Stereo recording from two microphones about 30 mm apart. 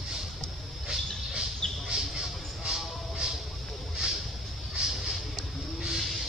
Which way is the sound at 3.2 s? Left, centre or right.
Right.